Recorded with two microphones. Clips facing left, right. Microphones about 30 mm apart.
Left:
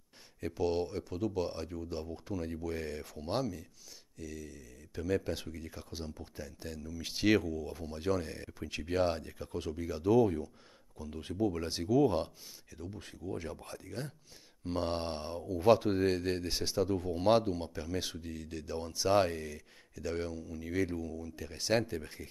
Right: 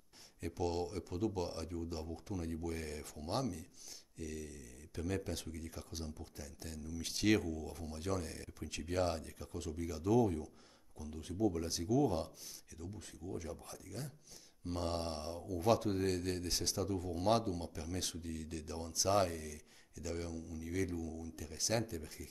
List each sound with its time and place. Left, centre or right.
0.5 s speech: centre
4.2 s speech: centre; by 10.5 s left
11.1 s speech: left
14.6 s speech: left
18.9 s speech: left